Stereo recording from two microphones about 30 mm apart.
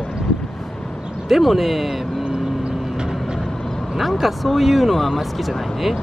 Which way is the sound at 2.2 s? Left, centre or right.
Right.